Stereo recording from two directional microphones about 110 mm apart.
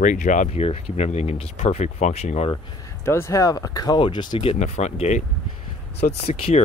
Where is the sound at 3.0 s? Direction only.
25° left (ahead or behind); by 4.3 s 45° left (ahead or behind).